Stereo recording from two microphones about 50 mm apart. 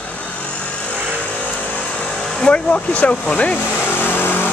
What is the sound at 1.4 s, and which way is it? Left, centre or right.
Vehicle, left.